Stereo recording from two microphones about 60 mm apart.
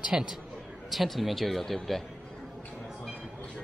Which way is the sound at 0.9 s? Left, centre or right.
Centre.